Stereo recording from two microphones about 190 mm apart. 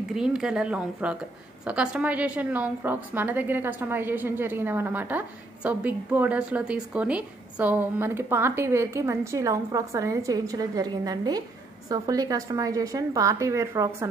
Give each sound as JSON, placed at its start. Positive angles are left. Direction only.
{"t": 0.1, "sound": "a woman's voice", "side_deg": -5}